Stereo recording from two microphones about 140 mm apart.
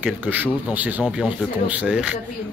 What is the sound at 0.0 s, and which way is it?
Speech, 10° right (ahead or behind).